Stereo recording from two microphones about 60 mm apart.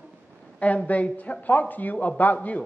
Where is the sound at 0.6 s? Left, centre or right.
Left.